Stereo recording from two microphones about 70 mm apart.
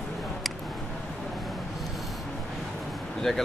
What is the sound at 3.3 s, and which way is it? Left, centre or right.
Speech, centre.